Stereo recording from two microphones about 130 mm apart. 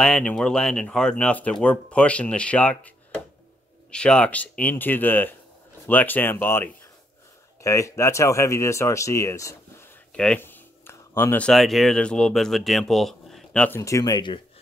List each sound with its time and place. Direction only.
0.0 s speech: 5° left (ahead or behind)
3.9 s speech: 5° left (ahead or behind); by 9.8 s 25° left (ahead or behind)
10.1 s speech: 5° left (ahead or behind)
10.4 s speech: 15° left (ahead or behind)
13.7 s speech: 20° left (ahead or behind)